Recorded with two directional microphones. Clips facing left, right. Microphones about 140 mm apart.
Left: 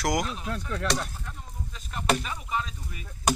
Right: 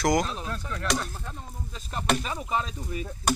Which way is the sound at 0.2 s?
35° right (ahead or behind).